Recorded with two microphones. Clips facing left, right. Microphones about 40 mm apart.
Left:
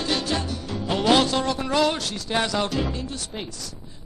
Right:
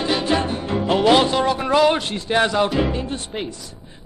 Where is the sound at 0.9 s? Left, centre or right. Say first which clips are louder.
Right 4 dB; centre.